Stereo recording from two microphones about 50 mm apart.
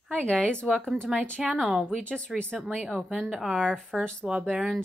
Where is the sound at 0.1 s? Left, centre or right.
Centre.